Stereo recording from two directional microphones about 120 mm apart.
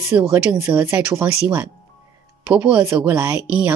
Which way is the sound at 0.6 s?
20° right (ahead or behind).